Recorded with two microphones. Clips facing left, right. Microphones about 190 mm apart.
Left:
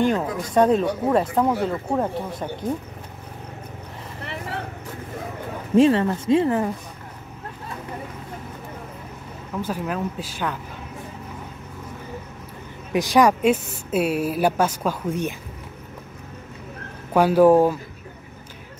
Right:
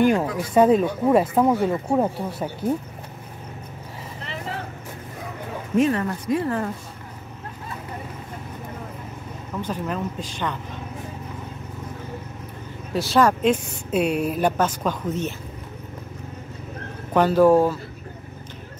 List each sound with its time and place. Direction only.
0.0 s speech: 10° right (ahead or behind)
5.8 s speech: 30° left (ahead or behind)
9.6 s a woman's voice: 5° left (ahead or behind)
12.9 s a woman's voice: 15° left (ahead or behind)
17.1 s a woman's voice: 10° left (ahead or behind)